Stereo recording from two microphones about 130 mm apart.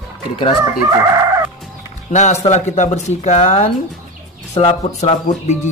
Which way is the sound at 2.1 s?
65° left (ahead or behind).